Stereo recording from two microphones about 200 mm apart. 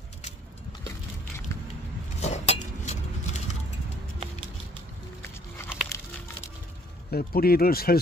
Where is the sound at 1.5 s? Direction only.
15° left (ahead or behind).